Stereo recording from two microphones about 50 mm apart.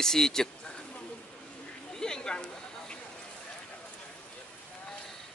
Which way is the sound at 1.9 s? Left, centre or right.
Centre.